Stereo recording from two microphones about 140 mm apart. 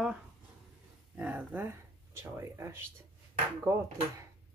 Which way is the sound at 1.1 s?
10° right (ahead or behind).